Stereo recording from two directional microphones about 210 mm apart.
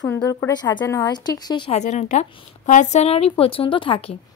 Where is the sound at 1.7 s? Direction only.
35° left (ahead or behind).